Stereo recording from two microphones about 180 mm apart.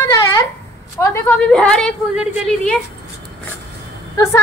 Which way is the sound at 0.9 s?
15° left (ahead or behind).